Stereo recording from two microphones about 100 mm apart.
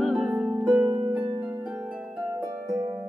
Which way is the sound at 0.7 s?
35° right (ahead or behind).